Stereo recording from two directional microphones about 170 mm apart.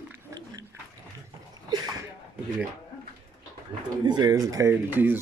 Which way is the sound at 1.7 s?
25° right (ahead or behind).